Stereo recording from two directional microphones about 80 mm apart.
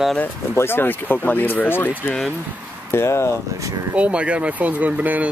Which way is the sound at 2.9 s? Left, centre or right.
Left.